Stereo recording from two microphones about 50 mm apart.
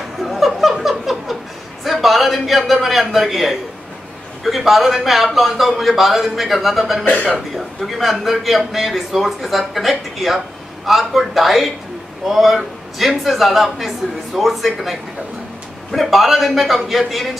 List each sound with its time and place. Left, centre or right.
0.2 s laughter: centre
1.9 s a man's voice: centre